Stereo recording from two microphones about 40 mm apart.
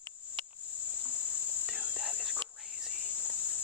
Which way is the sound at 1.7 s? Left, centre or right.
Centre.